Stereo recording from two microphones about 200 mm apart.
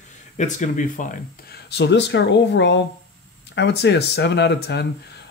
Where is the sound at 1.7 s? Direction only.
60° left (ahead or behind).